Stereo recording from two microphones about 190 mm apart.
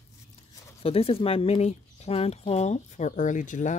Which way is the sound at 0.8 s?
30° left (ahead or behind).